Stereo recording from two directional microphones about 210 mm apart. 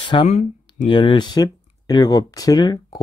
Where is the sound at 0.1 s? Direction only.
30° left (ahead or behind).